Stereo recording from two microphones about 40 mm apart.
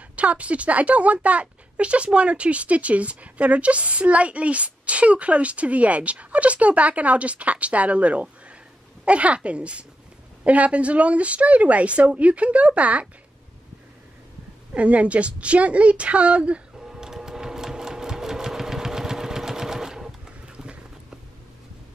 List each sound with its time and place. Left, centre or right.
0.1 s speech: right
14.7 s speech: right
16.7 s sewing machine: centre